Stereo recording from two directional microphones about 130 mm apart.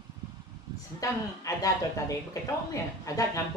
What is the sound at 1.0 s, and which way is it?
Speech, 25° left (ahead or behind).